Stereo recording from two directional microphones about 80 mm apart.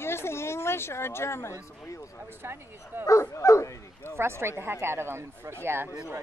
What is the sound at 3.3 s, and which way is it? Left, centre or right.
Speech, left.